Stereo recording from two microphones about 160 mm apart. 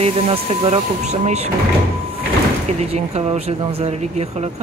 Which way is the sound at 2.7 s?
40° right (ahead or behind).